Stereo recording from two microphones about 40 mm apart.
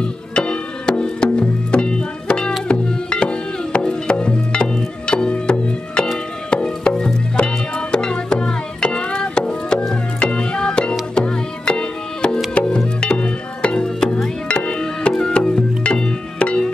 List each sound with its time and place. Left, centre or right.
0.0 s music: left